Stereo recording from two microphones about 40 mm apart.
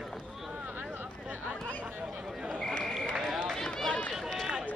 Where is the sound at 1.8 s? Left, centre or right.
Right.